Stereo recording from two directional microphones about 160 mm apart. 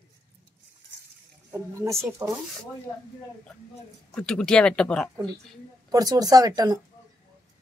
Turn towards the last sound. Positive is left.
turn(degrees=-25)  # may be behind; listen again after turning